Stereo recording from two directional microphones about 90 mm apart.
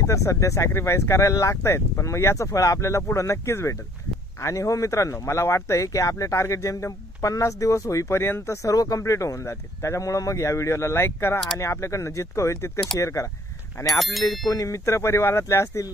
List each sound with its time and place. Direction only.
0.0 s speech: 35° left (ahead or behind)
13.9 s speech: centre (ahead or behind)
14.5 s speech: 35° left (ahead or behind)